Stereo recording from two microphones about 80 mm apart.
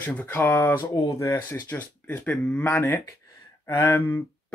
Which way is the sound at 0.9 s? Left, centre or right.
Left.